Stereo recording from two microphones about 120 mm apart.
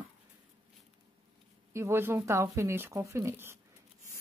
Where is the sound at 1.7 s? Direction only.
20° right (ahead or behind).